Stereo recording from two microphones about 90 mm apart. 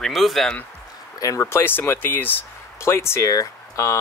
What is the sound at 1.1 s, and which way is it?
Speech, 40° left (ahead or behind).